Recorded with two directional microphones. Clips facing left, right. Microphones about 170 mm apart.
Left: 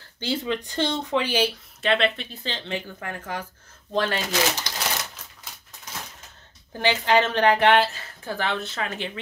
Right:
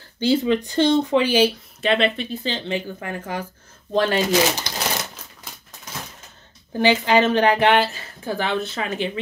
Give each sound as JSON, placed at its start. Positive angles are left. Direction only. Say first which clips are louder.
{"t": 0.2, "sound": "speech", "louder": "right 8 dB", "side_deg": -5}
{"t": 6.8, "sound": "speech", "louder": "right 4 dB", "side_deg": -10}